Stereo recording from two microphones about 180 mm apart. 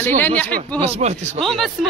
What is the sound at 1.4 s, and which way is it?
Speech, centre (ahead or behind).